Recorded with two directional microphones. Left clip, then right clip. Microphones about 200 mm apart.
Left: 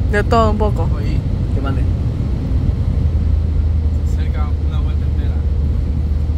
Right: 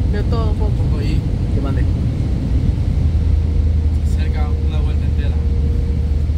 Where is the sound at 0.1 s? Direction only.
50° left (ahead or behind).